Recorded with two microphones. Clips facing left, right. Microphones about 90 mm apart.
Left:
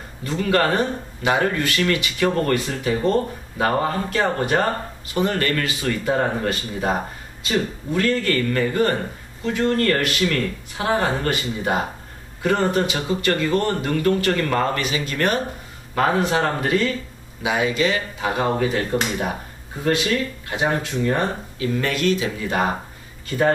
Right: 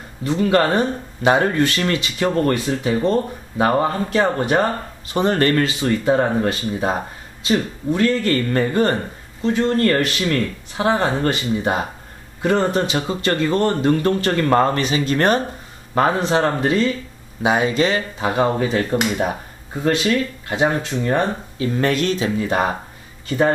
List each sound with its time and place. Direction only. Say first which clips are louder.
0.2 s speech: right 3 dB; 25° right (ahead or behind)
17.4 s speech: right 3 dB; 35° right (ahead or behind)
20.4 s speech: right 4 dB; 30° right (ahead or behind)